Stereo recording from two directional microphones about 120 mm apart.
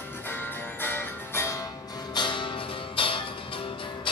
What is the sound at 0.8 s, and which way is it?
Music, 15° left (ahead or behind).